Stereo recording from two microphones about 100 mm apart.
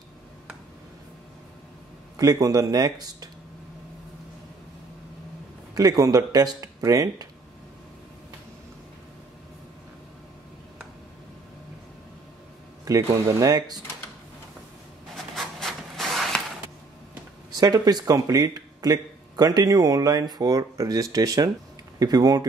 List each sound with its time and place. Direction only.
2.1 s speech: 40° right (ahead or behind)
5.8 s speech: 35° right (ahead or behind)
12.8 s speech: 35° right (ahead or behind)
15.1 s writing: centre (ahead or behind)
17.6 s speech: 40° right (ahead or behind)